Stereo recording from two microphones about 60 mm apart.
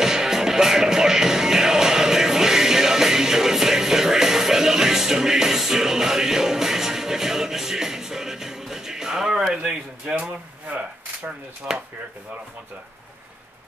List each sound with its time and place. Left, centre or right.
0.0 s music: centre
9.5 s speech: centre